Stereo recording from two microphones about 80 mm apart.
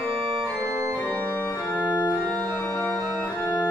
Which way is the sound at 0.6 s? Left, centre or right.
Right.